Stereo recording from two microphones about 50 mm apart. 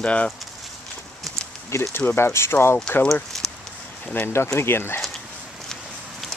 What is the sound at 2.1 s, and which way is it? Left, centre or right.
Speech, left.